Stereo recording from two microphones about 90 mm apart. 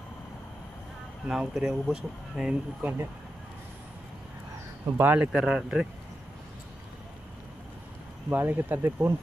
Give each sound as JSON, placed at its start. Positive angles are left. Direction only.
{"t": 1.2, "sound": "speech", "side_deg": -10}
{"t": 2.8, "sound": "speech", "side_deg": -20}
{"t": 4.9, "sound": "speech", "side_deg": -20}
{"t": 8.3, "sound": "speech", "side_deg": -20}